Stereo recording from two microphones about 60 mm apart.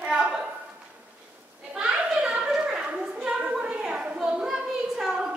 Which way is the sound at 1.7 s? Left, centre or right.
Centre.